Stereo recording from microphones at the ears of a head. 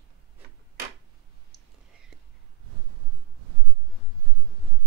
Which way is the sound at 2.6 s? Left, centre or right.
Right.